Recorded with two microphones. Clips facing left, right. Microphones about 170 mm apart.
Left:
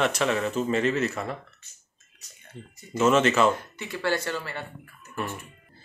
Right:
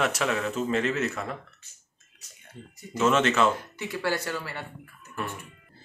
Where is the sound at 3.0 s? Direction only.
Centre (ahead or behind).